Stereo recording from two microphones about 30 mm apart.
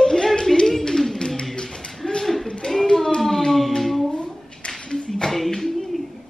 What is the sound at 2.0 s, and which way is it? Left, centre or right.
Mechanisms, left.